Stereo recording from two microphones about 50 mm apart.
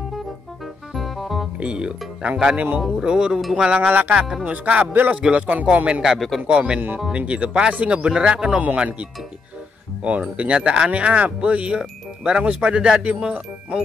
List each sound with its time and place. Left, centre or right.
0.9 s music: centre
1.6 s speech: right
2.5 s speech: right
3.0 s speech: centre
5.5 s speech: right
6.1 s speech: centre
6.4 s speech: right
10.0 s speech: right